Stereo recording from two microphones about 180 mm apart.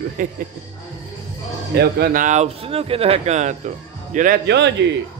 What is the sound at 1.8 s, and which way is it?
Speech, 60° right (ahead or behind).